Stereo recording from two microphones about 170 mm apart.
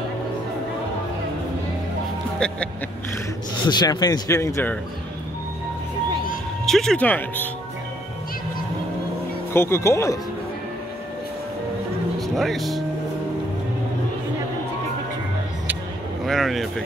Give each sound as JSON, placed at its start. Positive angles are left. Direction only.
{"t": 3.6, "sound": "speech", "side_deg": 25}
{"t": 6.6, "sound": "speech", "side_deg": 5}
{"t": 9.5, "sound": "speech", "side_deg": 15}
{"t": 12.2, "sound": "speech", "side_deg": 0}
{"t": 16.3, "sound": "speech", "side_deg": 0}